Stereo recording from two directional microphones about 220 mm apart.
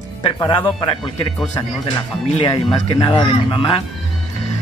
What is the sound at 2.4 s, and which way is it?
Speech, 20° left (ahead or behind).